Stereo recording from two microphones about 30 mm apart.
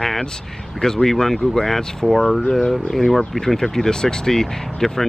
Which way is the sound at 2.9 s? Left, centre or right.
Centre.